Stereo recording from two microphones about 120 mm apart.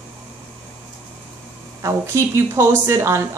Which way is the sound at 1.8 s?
25° right (ahead or behind).